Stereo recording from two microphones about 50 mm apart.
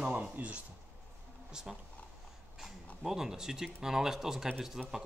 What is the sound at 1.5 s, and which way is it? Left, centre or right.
Speech, centre.